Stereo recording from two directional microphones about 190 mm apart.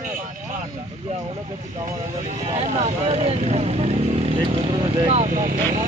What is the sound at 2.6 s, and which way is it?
Speech, 35° right (ahead or behind).